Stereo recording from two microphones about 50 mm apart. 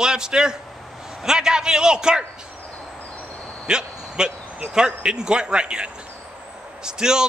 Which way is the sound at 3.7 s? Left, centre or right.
Centre.